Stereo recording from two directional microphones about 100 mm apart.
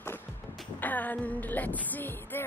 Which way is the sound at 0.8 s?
15° left (ahead or behind).